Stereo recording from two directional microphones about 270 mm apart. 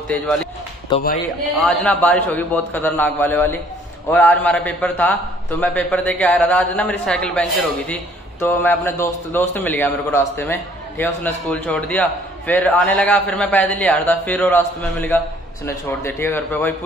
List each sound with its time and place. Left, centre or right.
0.1 s a man's voice: centre
0.9 s speech: centre
1.9 s a man's voice: centre